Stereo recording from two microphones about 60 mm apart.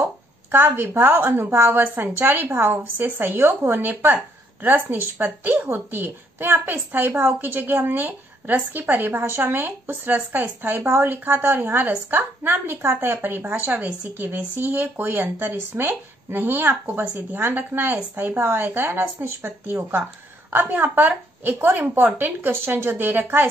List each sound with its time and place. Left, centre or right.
0.5 s a child's voice: right
3.4 s a woman's voice: right
3.8 s a child's voice: right
13.7 s speech: right
14.1 s a child's voice: right
18.3 s a woman's voice: right